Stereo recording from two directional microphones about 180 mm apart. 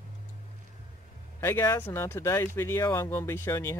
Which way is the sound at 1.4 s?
15° left (ahead or behind).